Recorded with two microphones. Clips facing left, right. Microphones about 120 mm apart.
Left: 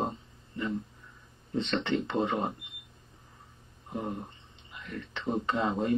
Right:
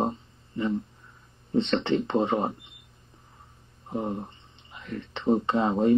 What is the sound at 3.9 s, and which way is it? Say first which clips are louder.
Speech: right 5 dB; 25° right (ahead or behind).